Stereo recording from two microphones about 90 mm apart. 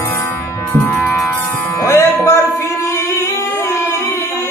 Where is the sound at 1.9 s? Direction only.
30° left (ahead or behind).